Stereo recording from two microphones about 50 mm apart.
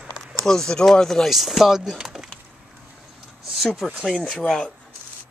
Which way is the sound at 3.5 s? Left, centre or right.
Centre.